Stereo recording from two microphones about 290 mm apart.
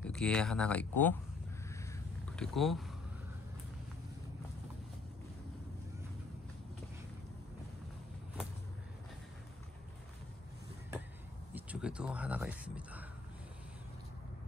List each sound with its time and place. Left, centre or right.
0.0 s speech: centre
1.7 s a sound: centre
11.5 s speech: centre